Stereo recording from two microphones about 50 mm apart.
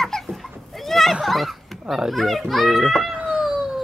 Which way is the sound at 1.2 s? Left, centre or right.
Centre.